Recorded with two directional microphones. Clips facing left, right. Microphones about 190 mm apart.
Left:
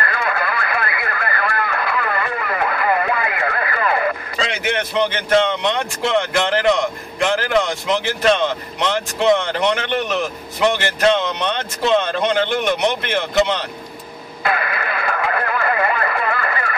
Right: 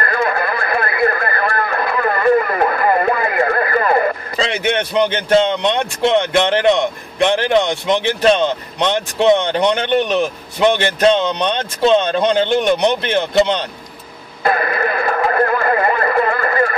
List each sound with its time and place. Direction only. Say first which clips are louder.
0.0 s radio: right 4 dB; 45° right (ahead or behind)
11.0 s speech: right 1 dB; 30° right (ahead or behind)
14.4 s radio: right 5 dB; 45° right (ahead or behind)